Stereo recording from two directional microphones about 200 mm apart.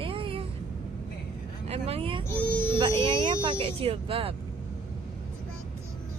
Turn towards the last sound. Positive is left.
turn(degrees=-30)  # may be behind; listen again after turning